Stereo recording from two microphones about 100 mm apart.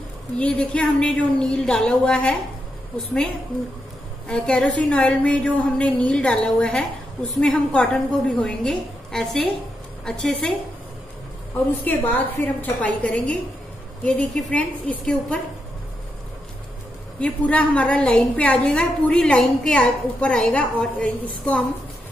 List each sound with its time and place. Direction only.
0.4 s a woman's voice: 10° left (ahead or behind)
4.3 s a woman's voice: 10° left (ahead or behind)
11.7 s a woman's voice: 20° left (ahead or behind)
17.2 s a woman's voice: 10° left (ahead or behind)